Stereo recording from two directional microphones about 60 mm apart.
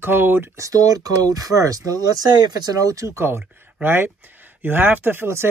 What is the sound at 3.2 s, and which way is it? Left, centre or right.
Speech, right.